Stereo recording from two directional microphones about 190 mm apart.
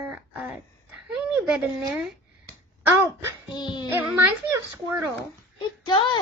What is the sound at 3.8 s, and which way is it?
A woman's voice, 10° right (ahead or behind).